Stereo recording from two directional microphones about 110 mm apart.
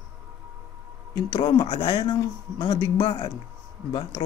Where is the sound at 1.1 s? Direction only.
40° left (ahead or behind).